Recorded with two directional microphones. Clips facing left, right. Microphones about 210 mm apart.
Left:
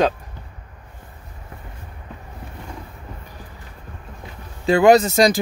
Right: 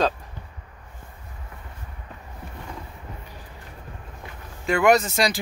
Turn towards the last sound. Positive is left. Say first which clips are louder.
# left 6 dB
turn(degrees=40)  # may be behind; listen again after turning